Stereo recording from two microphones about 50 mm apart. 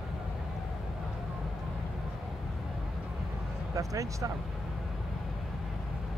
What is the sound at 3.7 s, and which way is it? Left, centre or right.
Speech, right.